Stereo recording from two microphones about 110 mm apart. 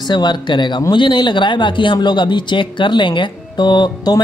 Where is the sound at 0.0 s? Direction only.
40° left (ahead or behind).